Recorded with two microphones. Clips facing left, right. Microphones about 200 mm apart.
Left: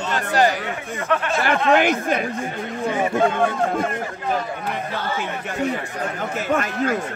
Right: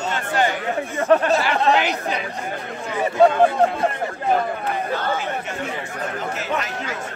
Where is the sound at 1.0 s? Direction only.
35° right (ahead or behind).